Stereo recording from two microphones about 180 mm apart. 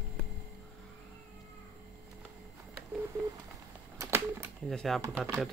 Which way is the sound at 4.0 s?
15° right (ahead or behind).